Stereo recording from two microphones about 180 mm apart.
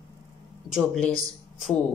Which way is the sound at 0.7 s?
5° left (ahead or behind).